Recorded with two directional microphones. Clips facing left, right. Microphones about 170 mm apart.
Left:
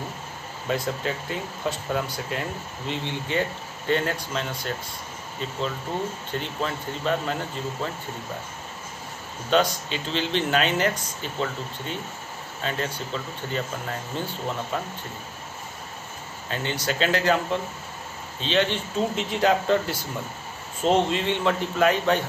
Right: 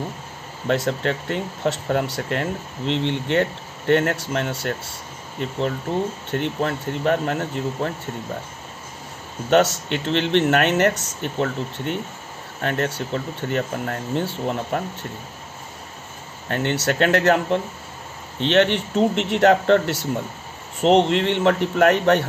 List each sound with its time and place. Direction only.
0.7 s speech: 70° right (ahead or behind)
9.5 s speech: 65° right (ahead or behind)
16.4 s speech: 60° right (ahead or behind)